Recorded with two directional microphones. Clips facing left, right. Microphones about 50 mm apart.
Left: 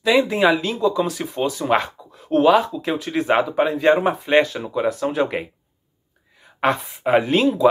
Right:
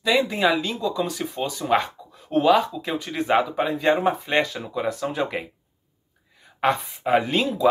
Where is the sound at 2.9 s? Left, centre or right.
Centre.